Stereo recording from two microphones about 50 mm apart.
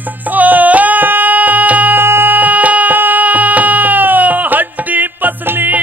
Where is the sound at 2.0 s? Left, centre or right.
Right.